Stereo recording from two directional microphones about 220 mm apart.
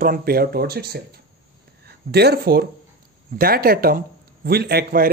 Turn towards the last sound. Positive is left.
turn(degrees=-45)  # may be behind; listen again after turning